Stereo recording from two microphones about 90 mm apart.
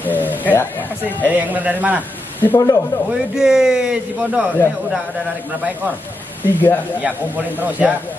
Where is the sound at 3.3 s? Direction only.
5° right (ahead or behind).